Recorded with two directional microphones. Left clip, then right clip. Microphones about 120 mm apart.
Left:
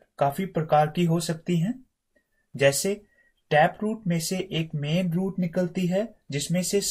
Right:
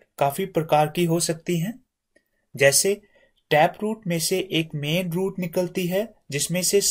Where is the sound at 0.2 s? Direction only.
15° right (ahead or behind).